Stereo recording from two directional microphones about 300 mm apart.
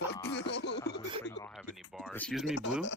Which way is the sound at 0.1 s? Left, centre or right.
Left.